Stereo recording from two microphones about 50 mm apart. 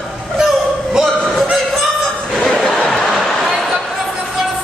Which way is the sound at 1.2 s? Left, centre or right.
Centre.